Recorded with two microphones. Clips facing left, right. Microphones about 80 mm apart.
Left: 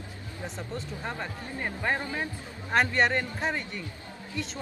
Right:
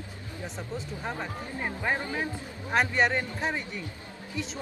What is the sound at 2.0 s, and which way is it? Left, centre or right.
Speech, right.